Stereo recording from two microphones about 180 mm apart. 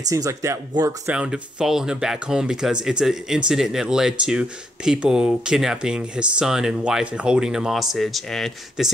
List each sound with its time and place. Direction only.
0.1 s speech: 15° right (ahead or behind)
1.0 s speech: 5° right (ahead or behind)